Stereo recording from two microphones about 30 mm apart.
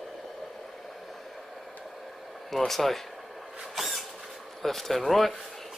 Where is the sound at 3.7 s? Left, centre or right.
Centre.